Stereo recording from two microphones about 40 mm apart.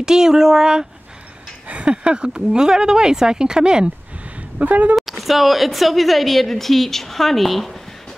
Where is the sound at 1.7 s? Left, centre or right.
Right.